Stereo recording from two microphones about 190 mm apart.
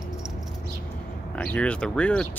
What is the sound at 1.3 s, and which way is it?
Speech, 5° left (ahead or behind).